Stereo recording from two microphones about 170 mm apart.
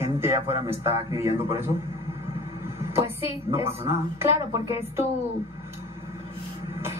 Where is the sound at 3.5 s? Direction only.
15° right (ahead or behind).